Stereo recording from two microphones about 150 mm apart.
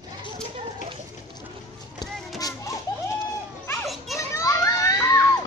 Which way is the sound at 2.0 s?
25° left (ahead or behind).